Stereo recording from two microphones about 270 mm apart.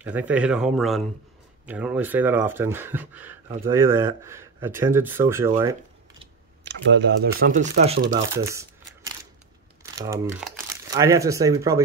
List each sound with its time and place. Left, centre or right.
0.0 s speech: centre
6.6 s speech: right
9.9 s speech: centre